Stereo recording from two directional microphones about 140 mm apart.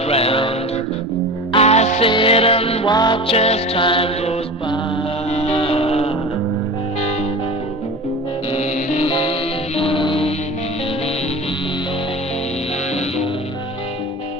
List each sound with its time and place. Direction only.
0.1 s music: 45° left (ahead or behind)
1.5 s music: 50° left (ahead or behind)
2.0 s music: 40° left (ahead or behind)
2.9 s music: 30° left (ahead or behind)
8.5 s music: 50° left (ahead or behind)